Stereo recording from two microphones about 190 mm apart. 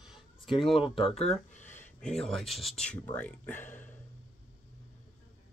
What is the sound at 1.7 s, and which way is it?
Speech, 5° left (ahead or behind).